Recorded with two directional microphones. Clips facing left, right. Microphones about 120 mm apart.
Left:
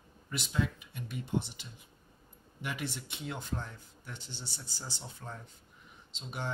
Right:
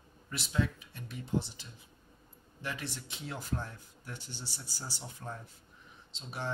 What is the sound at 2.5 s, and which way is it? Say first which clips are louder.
Speech: left 1 dB; 15° left (ahead or behind).